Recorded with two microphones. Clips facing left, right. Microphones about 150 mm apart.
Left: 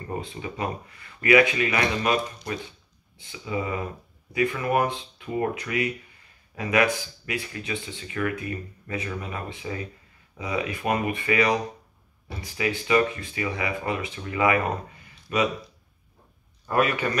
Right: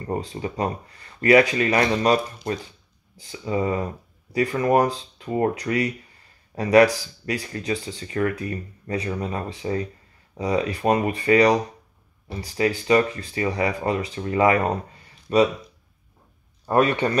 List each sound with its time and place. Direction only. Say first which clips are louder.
0.1 s speech: right 5 dB; 35° right (ahead or behind)
3.2 s speech: right 5 dB; 40° right (ahead or behind)
16.6 s speech: right 4 dB; 30° right (ahead or behind)